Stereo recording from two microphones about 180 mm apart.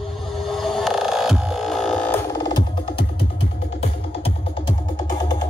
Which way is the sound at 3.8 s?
35° left (ahead or behind).